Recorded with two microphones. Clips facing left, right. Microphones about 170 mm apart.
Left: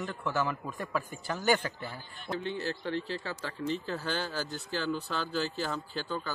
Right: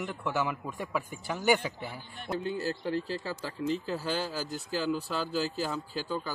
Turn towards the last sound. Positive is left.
turn(degrees=-5)  # may be behind; listen again after turning